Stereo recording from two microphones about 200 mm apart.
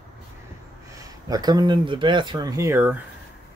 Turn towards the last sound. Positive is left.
turn(degrees=-10)  # may be behind; listen again after turning